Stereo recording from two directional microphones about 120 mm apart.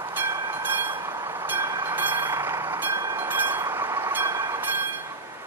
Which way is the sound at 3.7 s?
20° right (ahead or behind).